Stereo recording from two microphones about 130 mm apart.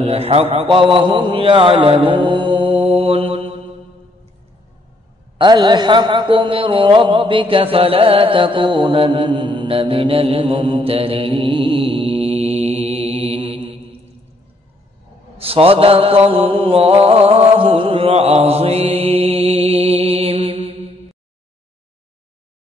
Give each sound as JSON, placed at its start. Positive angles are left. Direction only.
{"t": 0.0, "sound": "a man's voice", "side_deg": -50}
{"t": 5.4, "sound": "a man's voice", "side_deg": -35}
{"t": 15.3, "sound": "mantra", "side_deg": -45}